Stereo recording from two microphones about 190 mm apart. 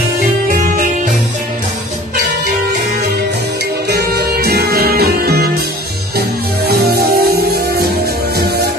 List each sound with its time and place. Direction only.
3.9 s music: 60° right (ahead or behind)
6.7 s music: 55° right (ahead or behind)